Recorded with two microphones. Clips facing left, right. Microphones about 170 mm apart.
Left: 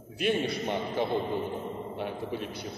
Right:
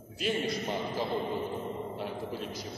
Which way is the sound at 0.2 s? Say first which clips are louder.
Left 3 dB; 65° left (ahead or behind).